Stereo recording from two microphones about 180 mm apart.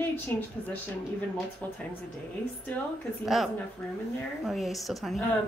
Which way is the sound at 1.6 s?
10° left (ahead or behind).